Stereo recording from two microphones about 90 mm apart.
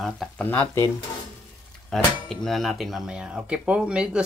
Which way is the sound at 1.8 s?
Centre (ahead or behind).